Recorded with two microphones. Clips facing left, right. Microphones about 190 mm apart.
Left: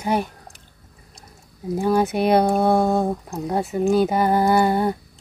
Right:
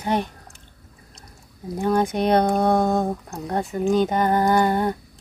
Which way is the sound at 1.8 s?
5° left (ahead or behind).